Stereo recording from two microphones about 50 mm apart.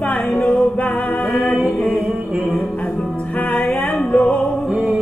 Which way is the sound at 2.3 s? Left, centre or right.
Centre.